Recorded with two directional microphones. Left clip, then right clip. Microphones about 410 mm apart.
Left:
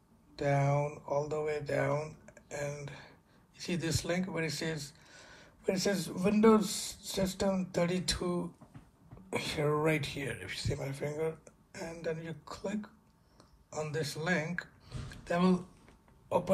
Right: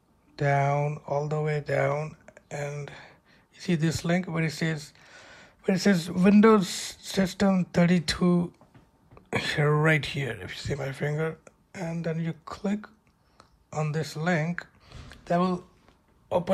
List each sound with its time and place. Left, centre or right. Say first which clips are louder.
0.4 s speech: right 6 dB; centre
9.3 s speech: right 6 dB; right
13.4 s a sound: right 6 dB; centre